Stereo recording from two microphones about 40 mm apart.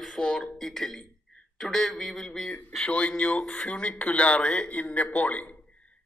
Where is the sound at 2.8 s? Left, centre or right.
Left.